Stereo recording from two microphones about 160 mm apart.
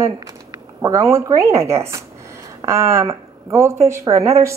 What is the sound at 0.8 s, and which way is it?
A woman's voice, 20° right (ahead or behind).